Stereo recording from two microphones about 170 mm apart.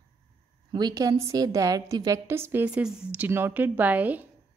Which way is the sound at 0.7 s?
25° right (ahead or behind).